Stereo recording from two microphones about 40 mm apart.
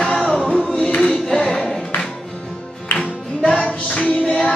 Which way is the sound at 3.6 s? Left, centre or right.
Left.